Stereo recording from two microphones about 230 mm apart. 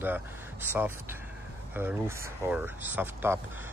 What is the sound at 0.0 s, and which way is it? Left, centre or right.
Speech, centre.